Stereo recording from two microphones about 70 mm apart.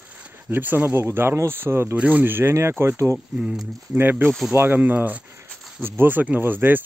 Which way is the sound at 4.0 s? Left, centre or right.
Right.